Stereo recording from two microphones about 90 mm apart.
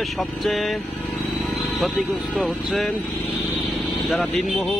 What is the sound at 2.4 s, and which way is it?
Speech, centre (ahead or behind).